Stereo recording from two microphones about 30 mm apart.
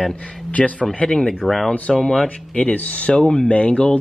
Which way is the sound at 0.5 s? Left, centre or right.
Left.